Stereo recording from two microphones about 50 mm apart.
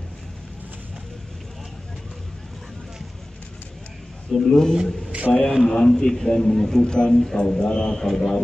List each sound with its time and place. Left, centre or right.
4.3 s a man's voice: centre
5.3 s speech: left
5.6 s a man's voice: centre